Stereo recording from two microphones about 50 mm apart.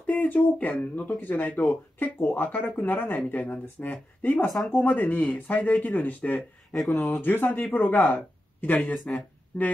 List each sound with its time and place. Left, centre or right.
0.0 s speech: left
1.6 s speech: left
6.7 s speech: centre
7.2 s speech: left